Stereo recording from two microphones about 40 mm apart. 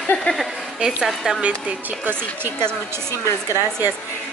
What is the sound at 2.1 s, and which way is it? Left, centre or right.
Speech, right.